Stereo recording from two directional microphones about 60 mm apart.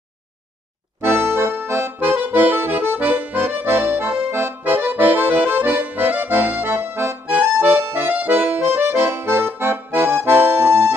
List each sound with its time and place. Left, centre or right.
1.0 s accordion: right
2.0 s accordion: right